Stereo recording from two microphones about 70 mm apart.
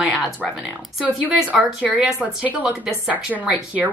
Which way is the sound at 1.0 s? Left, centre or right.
Right.